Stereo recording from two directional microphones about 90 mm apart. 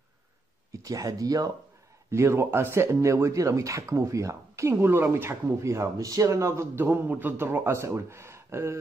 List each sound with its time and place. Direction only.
0.8 s speech: 40° right (ahead or behind)
2.0 s speech: 30° right (ahead or behind)